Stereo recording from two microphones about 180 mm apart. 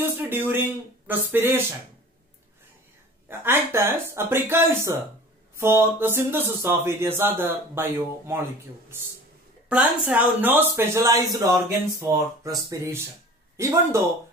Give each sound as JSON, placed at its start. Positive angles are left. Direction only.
{"t": 0.0, "sound": "speech", "side_deg": -10}
{"t": 3.3, "sound": "speech", "side_deg": -15}
{"t": 9.7, "sound": "speech", "side_deg": -5}